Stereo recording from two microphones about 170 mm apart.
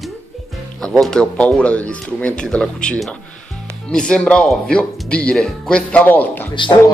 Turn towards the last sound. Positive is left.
turn(degrees=30)  # may be behind; listen again after turning